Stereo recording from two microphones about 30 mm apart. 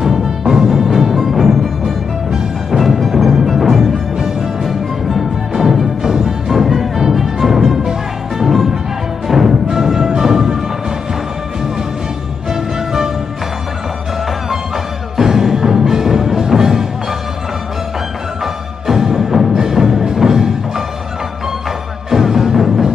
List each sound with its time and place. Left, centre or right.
0.0 s music: centre
0.4 s music: right
1.1 s music: centre
2.8 s music: centre
6.5 s music: centre
12.4 s music: centre
15.1 s music: centre
18.4 s music: centre
22.1 s music: centre